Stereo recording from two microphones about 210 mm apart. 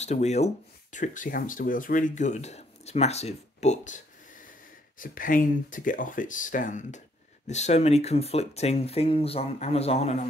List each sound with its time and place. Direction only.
0.0 s speech: 30° left (ahead or behind)